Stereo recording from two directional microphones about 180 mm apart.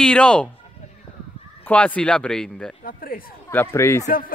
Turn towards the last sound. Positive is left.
turn(degrees=50)  # may be behind; listen again after turning